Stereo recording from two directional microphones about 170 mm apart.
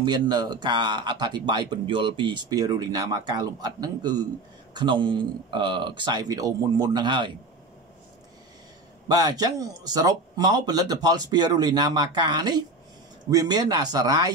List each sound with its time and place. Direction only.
0.0 s speech: 25° right (ahead or behind)
9.0 s speech: 20° right (ahead or behind)